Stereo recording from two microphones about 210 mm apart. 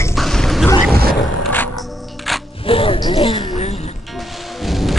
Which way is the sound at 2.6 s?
25° left (ahead or behind).